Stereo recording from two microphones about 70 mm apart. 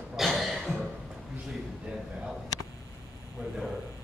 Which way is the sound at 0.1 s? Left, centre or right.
Centre.